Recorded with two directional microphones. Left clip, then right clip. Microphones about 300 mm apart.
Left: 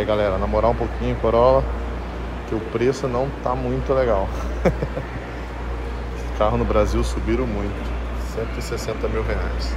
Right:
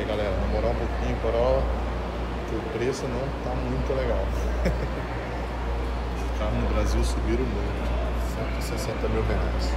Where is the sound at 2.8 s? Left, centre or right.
Centre.